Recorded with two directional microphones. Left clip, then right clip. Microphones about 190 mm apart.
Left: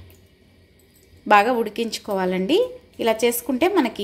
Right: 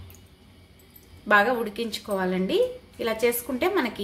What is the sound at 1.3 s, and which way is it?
A woman's voice, 40° left (ahead or behind).